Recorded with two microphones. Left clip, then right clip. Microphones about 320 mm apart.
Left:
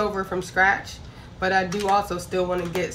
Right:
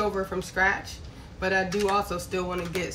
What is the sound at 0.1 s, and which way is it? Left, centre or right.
Speech, centre.